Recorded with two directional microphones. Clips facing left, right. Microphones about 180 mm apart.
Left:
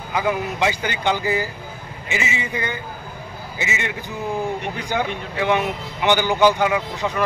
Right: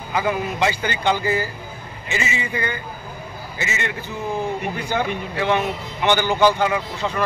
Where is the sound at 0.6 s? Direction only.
15° left (ahead or behind).